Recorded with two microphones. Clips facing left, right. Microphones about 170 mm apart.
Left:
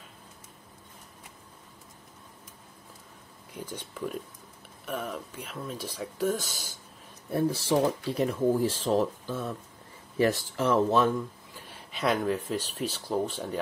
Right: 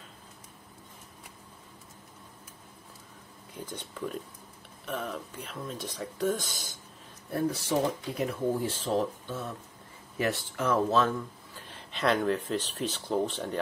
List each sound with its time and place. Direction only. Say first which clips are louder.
3.5 s speech: left 1 dB; 10° left (ahead or behind)
7.3 s speech: left 3 dB; 30° left (ahead or behind)
10.9 s speech: left 2 dB; 15° left (ahead or behind)